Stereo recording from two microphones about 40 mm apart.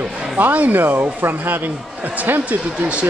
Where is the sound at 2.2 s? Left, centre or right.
Right.